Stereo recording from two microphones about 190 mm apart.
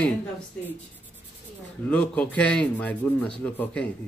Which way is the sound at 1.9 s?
5° left (ahead or behind).